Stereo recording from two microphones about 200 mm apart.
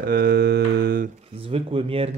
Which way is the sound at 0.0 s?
50° right (ahead or behind).